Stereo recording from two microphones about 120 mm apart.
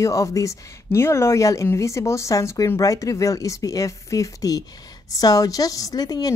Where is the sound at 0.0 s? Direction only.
25° left (ahead or behind).